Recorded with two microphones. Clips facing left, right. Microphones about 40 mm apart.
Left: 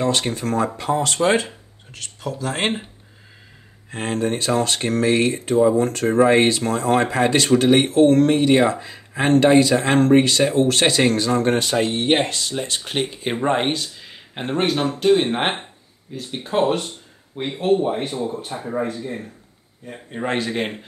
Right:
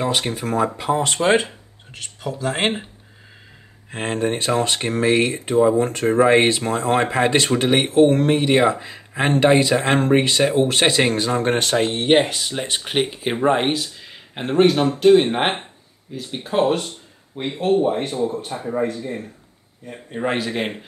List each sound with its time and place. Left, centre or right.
0.0 s speech: centre
3.9 s speech: centre
11.7 s speech: right
12.0 s speech: centre
13.2 s speech: centre